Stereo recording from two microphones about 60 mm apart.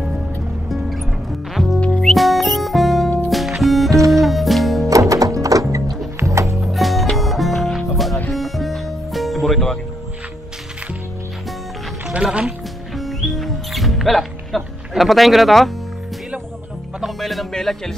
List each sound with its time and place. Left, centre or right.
0.7 s music: centre
4.8 s music: right
6.1 s music: right
6.6 s music: centre
12.1 s music: centre
12.9 s music: centre
17.0 s music: centre